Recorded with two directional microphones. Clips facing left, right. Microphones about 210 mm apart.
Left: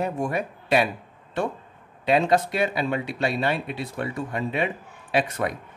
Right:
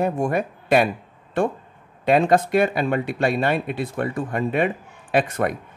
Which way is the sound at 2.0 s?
50° right (ahead or behind).